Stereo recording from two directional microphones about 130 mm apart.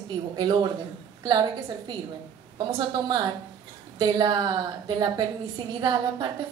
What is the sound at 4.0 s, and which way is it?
A woman's voice, 35° right (ahead or behind).